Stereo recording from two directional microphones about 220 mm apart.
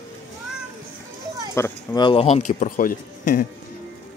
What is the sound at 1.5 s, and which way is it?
Speech, 10° left (ahead or behind).